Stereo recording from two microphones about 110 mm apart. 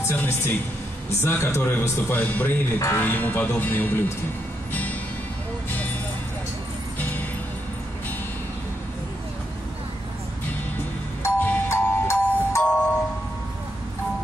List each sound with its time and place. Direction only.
0.1 s speech: 20° left (ahead or behind)
7.0 s music: 15° left (ahead or behind)
11.2 s music: 15° left (ahead or behind)